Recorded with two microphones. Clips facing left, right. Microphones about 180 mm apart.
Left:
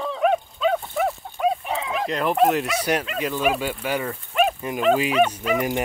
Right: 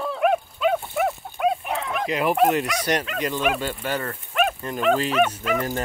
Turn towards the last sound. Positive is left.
turn(degrees=10)  # may be behind; listen again after turning